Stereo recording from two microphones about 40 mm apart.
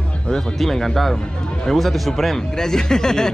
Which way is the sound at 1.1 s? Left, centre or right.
Left.